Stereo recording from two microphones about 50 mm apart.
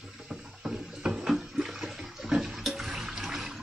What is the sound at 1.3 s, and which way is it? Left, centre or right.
Toilet flush, centre.